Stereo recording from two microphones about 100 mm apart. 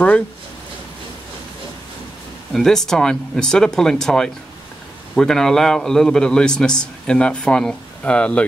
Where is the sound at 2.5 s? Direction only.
5° left (ahead or behind).